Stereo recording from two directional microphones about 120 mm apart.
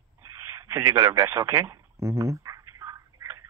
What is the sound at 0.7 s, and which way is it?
Radio, 25° right (ahead or behind).